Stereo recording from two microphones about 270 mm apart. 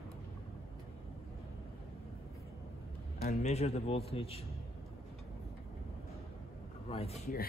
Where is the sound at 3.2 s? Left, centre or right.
Left.